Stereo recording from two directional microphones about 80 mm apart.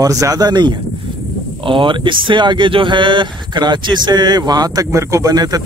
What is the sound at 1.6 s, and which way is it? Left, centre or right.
Speech, right.